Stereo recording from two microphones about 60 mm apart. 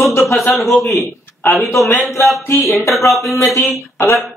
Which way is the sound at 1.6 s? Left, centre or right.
Left.